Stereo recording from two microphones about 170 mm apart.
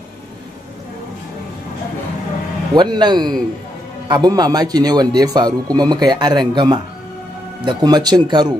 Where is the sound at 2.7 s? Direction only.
25° right (ahead or behind).